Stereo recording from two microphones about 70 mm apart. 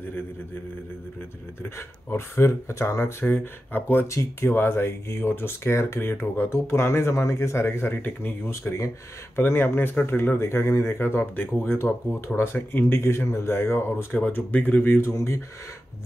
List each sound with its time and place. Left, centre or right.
1.6 s speech: left
8.5 s speech: left
9.4 s speech: left
14.1 s speech: left
15.0 s speech: left